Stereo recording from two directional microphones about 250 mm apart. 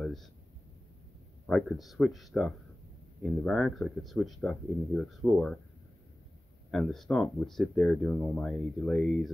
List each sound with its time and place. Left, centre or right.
0.0 s a sound: centre
1.5 s speech: centre
6.7 s speech: centre